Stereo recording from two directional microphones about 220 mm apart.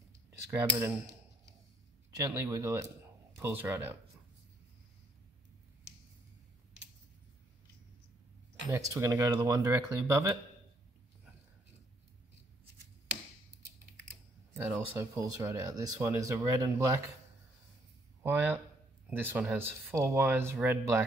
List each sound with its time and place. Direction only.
0.5 s speech: 10° right (ahead or behind)
2.0 s speech: 15° right (ahead or behind)
8.7 s speech: 15° right (ahead or behind)
14.5 s speech: 10° right (ahead or behind)
18.2 s speech: 5° right (ahead or behind)